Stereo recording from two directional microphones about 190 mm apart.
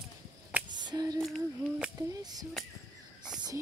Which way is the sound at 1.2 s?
Centre (ahead or behind).